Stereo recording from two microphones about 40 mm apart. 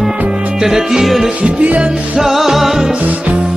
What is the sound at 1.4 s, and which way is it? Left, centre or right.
Music, right.